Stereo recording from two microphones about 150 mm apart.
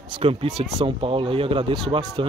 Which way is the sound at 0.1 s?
35° right (ahead or behind).